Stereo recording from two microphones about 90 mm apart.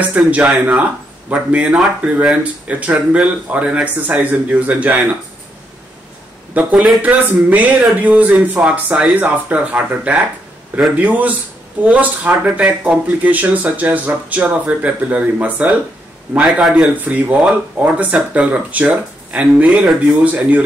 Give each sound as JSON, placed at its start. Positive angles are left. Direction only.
{"t": 0.0, "sound": "speech", "side_deg": -15}
{"t": 6.7, "sound": "speech", "side_deg": -10}